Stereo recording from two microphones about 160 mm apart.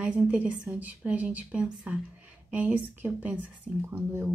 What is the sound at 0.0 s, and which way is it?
Speech, 10° right (ahead or behind).